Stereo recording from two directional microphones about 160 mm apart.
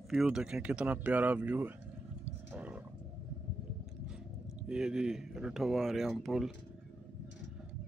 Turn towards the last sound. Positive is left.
turn(degrees=0)  # may be behind; listen again after turning